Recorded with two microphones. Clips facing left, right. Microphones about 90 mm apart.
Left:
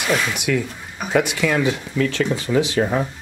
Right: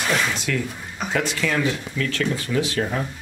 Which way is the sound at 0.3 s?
15° left (ahead or behind).